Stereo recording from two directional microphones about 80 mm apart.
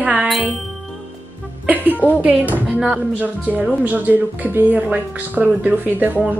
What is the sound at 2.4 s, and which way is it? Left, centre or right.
A woman's voice, right.